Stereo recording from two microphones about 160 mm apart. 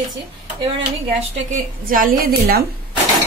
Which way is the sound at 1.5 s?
60° right (ahead or behind).